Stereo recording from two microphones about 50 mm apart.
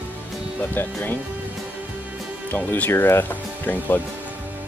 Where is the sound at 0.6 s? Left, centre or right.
Left.